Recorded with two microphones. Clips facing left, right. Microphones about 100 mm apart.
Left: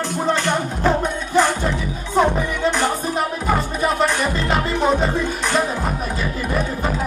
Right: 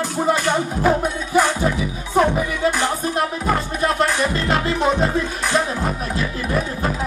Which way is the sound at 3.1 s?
Centre (ahead or behind).